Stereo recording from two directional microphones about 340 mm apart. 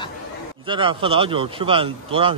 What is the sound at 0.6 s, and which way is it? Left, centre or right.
Speech, centre.